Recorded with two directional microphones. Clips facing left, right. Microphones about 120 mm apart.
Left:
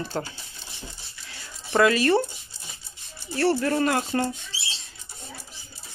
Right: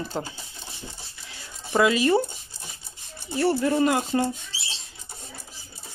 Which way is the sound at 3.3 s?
15° right (ahead or behind).